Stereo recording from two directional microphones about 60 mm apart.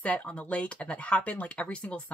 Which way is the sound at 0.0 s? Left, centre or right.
Left.